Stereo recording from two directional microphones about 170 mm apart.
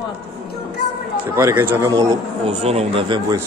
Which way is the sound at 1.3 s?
15° right (ahead or behind).